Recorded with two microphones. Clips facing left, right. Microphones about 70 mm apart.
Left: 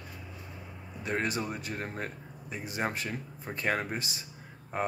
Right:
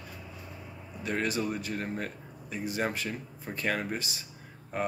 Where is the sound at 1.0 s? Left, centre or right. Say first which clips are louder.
Right 1 dB; left.